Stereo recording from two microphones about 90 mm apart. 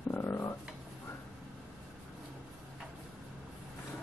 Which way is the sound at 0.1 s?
30° left (ahead or behind).